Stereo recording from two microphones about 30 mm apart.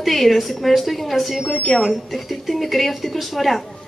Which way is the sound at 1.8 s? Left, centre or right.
Centre.